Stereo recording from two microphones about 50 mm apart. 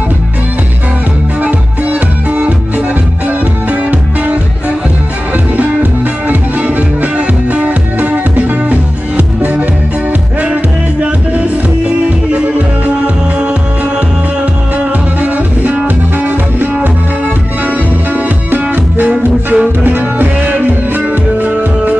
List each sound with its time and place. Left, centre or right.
1.4 s music: right
15.1 s music: right
17.6 s music: right